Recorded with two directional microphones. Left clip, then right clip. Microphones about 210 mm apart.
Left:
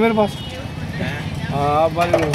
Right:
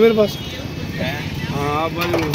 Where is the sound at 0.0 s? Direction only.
40° left (ahead or behind).